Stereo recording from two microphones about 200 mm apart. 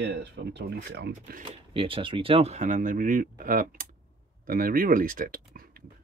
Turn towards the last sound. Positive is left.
turn(degrees=-45)  # may be behind; listen again after turning